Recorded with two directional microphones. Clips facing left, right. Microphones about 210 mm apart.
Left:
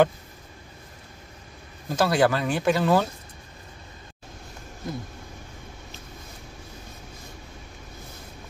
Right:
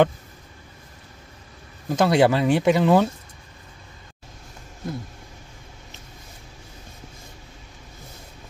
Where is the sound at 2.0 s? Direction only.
20° right (ahead or behind).